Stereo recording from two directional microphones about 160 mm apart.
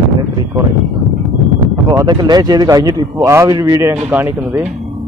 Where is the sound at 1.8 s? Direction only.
25° right (ahead or behind).